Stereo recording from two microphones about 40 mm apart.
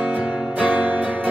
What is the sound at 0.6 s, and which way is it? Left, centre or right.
Music, right.